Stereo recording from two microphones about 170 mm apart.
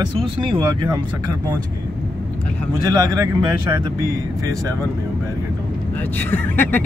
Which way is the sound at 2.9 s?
20° right (ahead or behind).